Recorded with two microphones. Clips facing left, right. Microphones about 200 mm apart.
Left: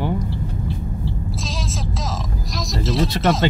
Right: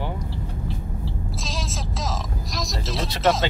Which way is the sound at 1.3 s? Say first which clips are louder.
Left 3 dB; centre (ahead or behind).